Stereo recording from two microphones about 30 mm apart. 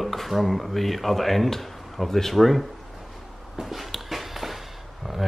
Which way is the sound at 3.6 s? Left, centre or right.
Centre.